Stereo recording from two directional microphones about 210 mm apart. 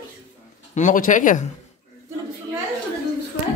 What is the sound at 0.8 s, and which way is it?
Speech, 40° left (ahead or behind).